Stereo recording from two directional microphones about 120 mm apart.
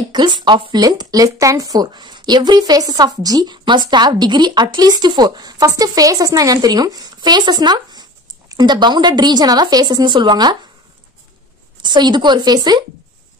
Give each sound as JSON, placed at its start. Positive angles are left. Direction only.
{"t": 0.1, "sound": "speech", "side_deg": -35}
{"t": 11.8, "sound": "speech", "side_deg": -40}